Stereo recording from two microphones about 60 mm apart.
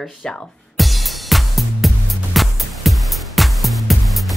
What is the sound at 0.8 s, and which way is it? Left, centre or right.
Music, centre.